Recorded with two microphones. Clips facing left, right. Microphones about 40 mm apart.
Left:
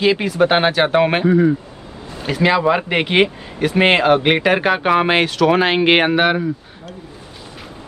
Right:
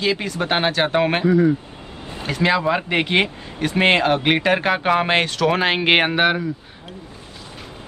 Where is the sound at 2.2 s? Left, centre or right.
Centre.